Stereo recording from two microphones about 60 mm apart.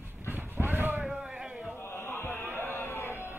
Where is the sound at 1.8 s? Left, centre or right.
Left.